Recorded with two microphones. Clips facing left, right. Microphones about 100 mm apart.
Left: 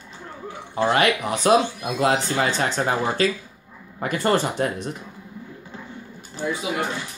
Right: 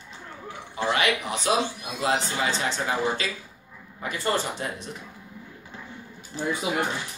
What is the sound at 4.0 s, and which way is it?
Speech, 60° left (ahead or behind).